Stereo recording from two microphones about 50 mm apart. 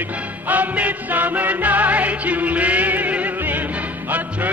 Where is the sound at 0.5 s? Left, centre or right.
Right.